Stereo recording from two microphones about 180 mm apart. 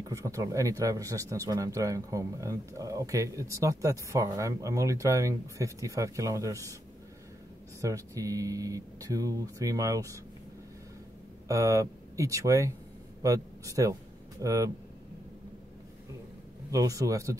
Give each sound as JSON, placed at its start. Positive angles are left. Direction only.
{"t": 0.1, "sound": "speech", "side_deg": -20}
{"t": 7.8, "sound": "speech", "side_deg": -20}
{"t": 11.4, "sound": "a man's voice", "side_deg": -15}
{"t": 16.7, "sound": "speech", "side_deg": -20}